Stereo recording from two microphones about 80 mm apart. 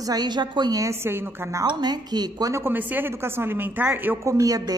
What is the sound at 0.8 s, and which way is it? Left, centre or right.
Speech, right.